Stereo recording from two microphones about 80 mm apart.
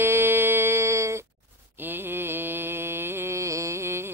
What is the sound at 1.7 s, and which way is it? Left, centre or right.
Mantra, right.